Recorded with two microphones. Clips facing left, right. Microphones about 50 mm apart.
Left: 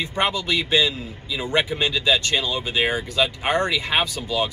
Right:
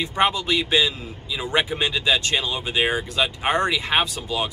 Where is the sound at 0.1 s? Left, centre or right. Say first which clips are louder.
Right 3 dB; right.